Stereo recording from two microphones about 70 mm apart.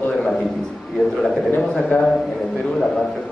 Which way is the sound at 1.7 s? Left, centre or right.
Centre.